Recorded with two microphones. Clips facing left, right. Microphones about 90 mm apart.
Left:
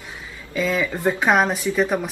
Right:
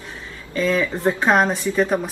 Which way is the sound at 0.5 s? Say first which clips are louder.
Right 2 dB; 10° left (ahead or behind).